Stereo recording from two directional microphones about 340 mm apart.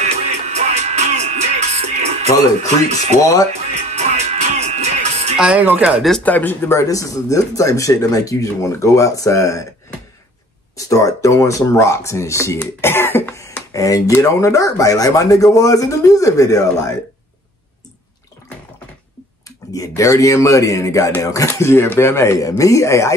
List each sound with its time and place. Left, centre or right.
0.0 s music: centre
3.2 s speech: centre
3.7 s music: centre
5.4 s speech: centre
10.8 s speech: centre
19.7 s speech: centre